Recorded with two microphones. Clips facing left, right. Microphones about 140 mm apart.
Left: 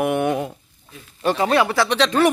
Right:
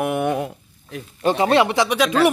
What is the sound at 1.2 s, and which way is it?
Speech, 20° right (ahead or behind).